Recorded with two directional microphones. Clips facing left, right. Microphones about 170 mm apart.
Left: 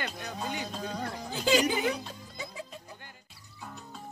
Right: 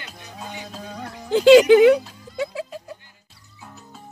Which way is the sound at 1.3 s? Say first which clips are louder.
Right 16 dB; 80° right.